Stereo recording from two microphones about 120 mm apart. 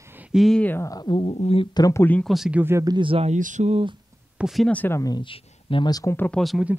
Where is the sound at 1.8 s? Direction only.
30° left (ahead or behind).